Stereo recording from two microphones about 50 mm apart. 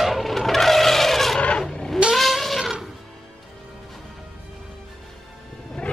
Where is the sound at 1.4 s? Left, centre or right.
Centre.